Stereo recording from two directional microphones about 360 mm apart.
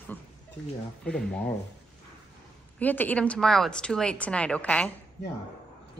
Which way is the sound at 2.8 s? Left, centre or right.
Centre.